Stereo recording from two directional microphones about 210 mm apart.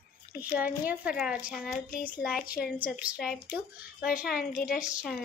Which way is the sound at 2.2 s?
40° left (ahead or behind).